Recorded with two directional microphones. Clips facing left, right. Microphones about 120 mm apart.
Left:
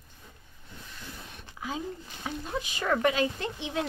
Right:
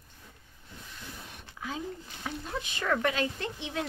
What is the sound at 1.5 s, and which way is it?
A woman's voice, 20° left (ahead or behind).